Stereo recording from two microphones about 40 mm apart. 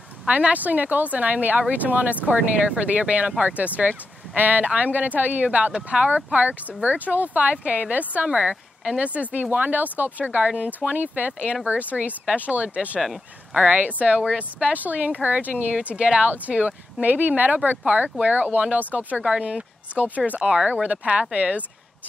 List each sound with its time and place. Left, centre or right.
0.3 s speech: right
10.4 s speech: right
10.9 s speech: right
13.0 s speech: centre
13.7 s speech: right
14.7 s speech: right